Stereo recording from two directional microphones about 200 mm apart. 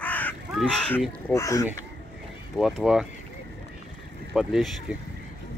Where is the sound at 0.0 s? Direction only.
10° left (ahead or behind).